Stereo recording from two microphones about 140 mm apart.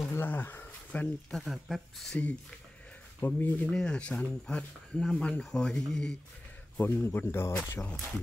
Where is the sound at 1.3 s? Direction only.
Centre (ahead or behind).